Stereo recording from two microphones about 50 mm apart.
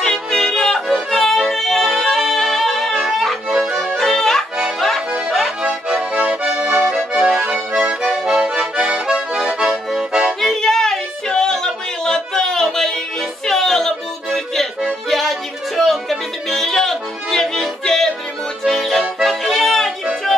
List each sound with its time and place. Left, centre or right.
0.0 s music: centre
3.5 s accordion: centre
3.9 s music: centre
4.7 s accordion: centre
5.6 s accordion: centre
6.1 s accordion: right
6.9 s accordion: centre
10.4 s a sound: centre
13.5 s music: centre
18.6 s accordion: centre